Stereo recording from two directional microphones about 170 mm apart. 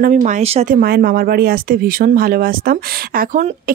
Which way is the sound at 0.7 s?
60° right (ahead or behind).